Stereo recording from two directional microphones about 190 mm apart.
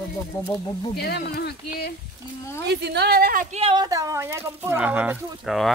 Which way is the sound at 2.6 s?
60° right (ahead or behind).